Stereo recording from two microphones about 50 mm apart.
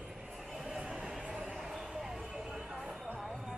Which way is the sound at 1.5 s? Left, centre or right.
Centre.